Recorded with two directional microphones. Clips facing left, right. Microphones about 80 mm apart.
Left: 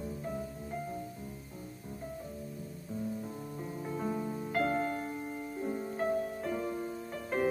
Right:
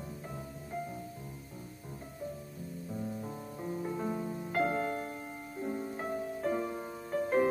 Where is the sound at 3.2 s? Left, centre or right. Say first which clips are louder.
Even; centre.